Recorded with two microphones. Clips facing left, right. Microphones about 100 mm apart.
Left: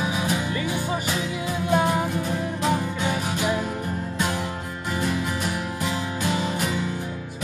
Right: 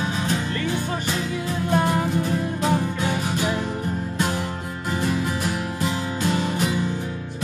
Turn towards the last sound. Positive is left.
turn(degrees=0)  # may be behind; listen again after turning